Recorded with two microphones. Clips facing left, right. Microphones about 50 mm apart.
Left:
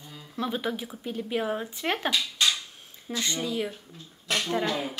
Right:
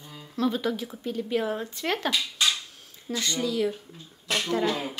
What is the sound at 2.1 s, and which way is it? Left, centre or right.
Dishes, centre.